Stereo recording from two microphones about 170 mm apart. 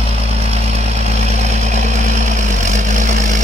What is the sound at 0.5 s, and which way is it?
Vehicle, 40° right (ahead or behind).